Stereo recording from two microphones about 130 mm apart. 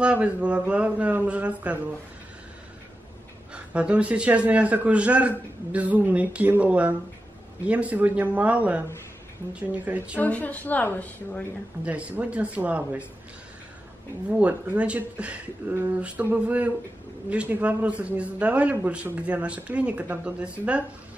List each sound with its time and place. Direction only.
0.0 s a man's voice: 10° right (ahead or behind)
3.5 s a man's voice: 10° right (ahead or behind)
10.2 s a woman's voice: 10° left (ahead or behind)
11.8 s a man's voice: 10° right (ahead or behind)
14.4 s a man's voice: 10° right (ahead or behind)